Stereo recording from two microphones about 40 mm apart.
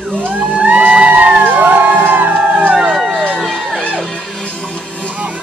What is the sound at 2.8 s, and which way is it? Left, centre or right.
Crowd, centre.